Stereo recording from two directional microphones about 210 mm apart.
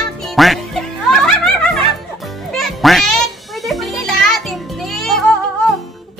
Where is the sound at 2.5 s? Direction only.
Centre (ahead or behind).